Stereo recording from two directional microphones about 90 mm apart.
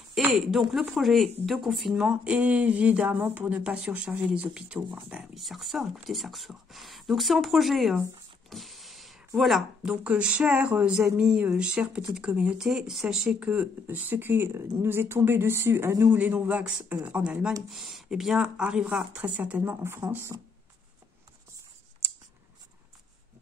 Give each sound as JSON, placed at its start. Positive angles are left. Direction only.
{"t": 0.1, "sound": "speech", "side_deg": -5}
{"t": 5.3, "sound": "speech", "side_deg": 0}
{"t": 8.5, "sound": "a sound", "side_deg": 0}
{"t": 10.0, "sound": "speech", "side_deg": -10}
{"t": 16.1, "sound": "speech", "side_deg": -20}